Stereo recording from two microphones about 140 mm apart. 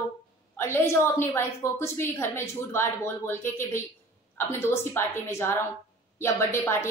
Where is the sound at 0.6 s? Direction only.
15° left (ahead or behind).